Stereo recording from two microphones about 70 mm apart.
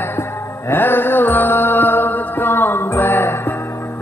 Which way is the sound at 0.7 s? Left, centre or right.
Left.